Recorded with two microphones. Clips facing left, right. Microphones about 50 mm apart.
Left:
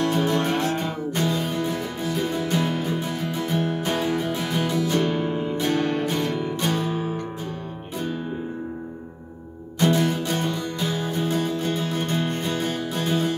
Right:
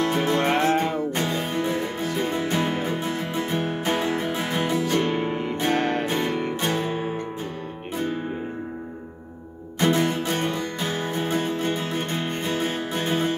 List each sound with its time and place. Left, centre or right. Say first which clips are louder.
0.0 s music: even; right
5.3 s music: left 1 dB; right
5.6 s music: right 1 dB; right
9.8 s music: even; right